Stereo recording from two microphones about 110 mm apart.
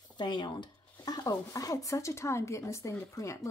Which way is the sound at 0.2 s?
40° left (ahead or behind).